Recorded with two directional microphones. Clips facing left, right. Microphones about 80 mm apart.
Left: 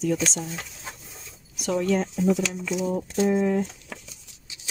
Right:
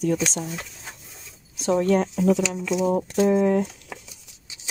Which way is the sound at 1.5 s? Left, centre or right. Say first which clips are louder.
Right 4 dB; right.